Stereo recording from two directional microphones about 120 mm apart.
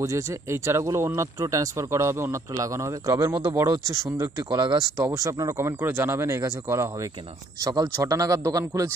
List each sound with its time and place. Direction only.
0.0 s speech: 25° right (ahead or behind)